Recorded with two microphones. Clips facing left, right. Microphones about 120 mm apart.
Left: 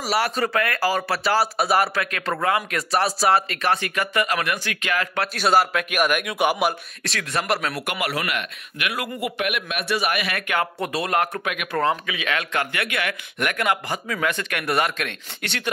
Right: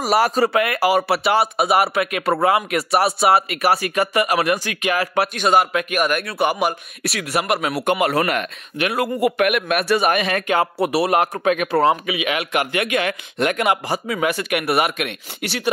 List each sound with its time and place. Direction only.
0.0 s speech: 45° right (ahead or behind)
0.4 s speech: 25° right (ahead or behind)
1.6 s a man's voice: 5° right (ahead or behind)
2.0 s speech: 15° right (ahead or behind)
3.6 s speech: 15° right (ahead or behind)
5.4 s a man's voice: centre (ahead or behind)
6.0 s speech: 10° left (ahead or behind)
7.3 s speech: 10° right (ahead or behind)
7.8 s speech: 25° right (ahead or behind)
8.1 s speech: 40° right (ahead or behind)
9.2 s speech: 50° right (ahead or behind); by 10.7 s 25° right (ahead or behind)
10.8 s speech: 15° right (ahead or behind)
11.4 s speech: 35° right (ahead or behind)
11.8 s speech: 20° right (ahead or behind)